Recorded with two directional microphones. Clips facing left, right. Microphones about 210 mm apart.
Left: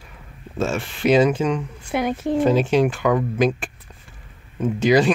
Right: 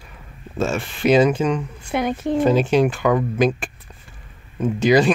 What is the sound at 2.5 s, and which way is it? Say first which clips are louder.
Speech: right 1 dB; 45° right (ahead or behind).